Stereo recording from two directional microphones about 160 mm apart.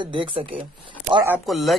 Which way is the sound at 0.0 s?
30° right (ahead or behind).